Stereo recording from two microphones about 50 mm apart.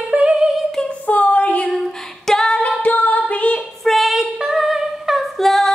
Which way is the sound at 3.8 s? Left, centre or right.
Centre.